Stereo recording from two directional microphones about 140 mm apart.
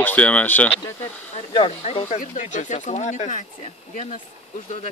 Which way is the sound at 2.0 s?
60° left (ahead or behind).